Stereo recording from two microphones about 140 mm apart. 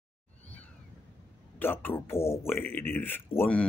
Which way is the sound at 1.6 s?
15° left (ahead or behind).